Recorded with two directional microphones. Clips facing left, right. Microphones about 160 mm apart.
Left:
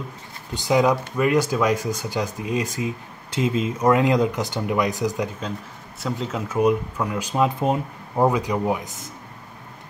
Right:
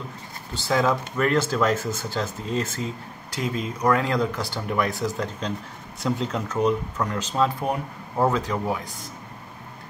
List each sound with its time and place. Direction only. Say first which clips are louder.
0.5 s speech: left 3 dB; 15° left (ahead or behind)
6.0 s speech: right 1 dB; 5° left (ahead or behind); by 8.9 s 20° left (ahead or behind)